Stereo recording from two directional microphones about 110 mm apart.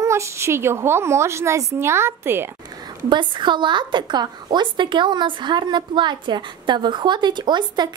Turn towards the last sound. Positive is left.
turn(degrees=-40)  # may be behind; listen again after turning